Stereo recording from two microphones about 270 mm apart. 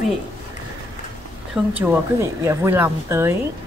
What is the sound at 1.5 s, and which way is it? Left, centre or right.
A woman's voice, centre.